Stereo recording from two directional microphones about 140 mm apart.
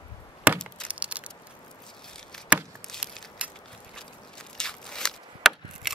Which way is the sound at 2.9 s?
5° left (ahead or behind).